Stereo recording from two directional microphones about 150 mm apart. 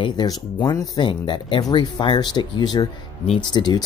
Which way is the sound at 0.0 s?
30° left (ahead or behind).